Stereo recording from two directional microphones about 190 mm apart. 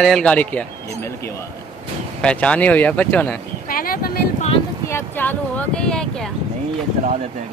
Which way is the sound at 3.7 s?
50° left (ahead or behind).